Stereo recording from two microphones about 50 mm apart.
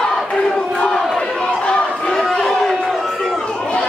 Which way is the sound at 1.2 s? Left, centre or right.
Centre.